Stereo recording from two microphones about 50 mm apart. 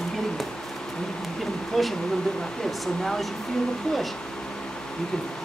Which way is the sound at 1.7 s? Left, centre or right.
Centre.